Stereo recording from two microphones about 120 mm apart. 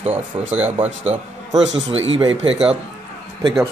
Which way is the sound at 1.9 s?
55° right (ahead or behind).